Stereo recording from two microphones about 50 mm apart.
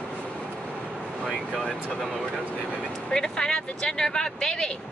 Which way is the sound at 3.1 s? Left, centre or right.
Centre.